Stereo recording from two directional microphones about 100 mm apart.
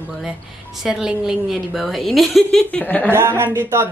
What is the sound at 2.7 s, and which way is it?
Speech, 15° left (ahead or behind).